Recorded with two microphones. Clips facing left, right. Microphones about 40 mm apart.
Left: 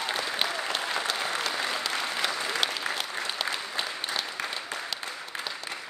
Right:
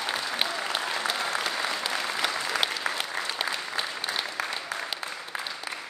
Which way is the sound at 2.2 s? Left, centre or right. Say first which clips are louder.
Right 2 dB; centre.